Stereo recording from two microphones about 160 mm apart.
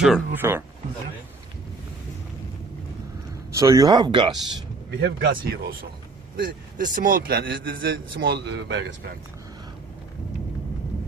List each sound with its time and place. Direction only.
0.0 s speech: 5° right (ahead or behind)
0.4 s a man's voice: 15° right (ahead or behind)
3.5 s speech: 20° right (ahead or behind)
5.0 s speech: 75° right (ahead or behind)
6.3 s a man's voice: 60° right (ahead or behind); by 8.7 s 80° right